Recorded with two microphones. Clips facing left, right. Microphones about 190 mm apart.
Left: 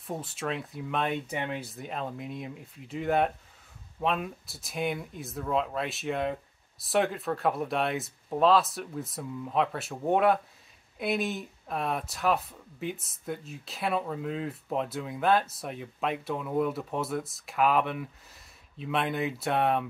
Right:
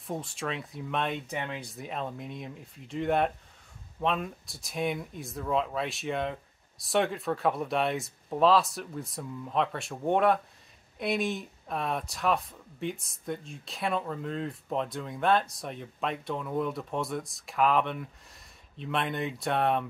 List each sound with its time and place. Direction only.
0.0 s speech: centre (ahead or behind)